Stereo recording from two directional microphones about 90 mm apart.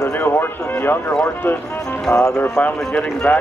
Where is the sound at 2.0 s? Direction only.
10° left (ahead or behind).